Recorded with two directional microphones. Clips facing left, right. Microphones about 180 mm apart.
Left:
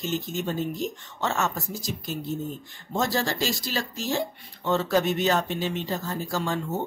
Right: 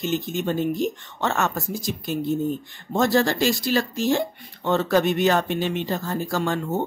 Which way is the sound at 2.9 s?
60° right (ahead or behind).